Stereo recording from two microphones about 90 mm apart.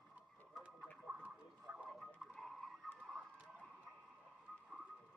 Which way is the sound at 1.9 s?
5° left (ahead or behind).